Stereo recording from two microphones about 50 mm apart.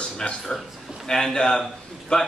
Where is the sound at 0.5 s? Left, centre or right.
Centre.